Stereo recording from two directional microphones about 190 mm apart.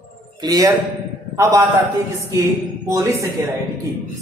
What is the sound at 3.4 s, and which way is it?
Speech, 15° right (ahead or behind).